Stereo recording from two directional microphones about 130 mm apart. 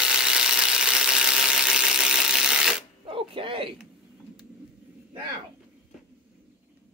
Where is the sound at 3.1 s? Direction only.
40° right (ahead or behind).